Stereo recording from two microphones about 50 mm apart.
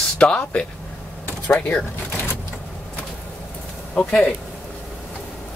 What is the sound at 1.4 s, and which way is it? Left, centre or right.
Speech, left.